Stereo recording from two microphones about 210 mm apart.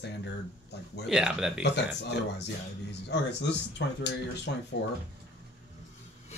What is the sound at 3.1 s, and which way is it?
Speech, 55° left (ahead or behind).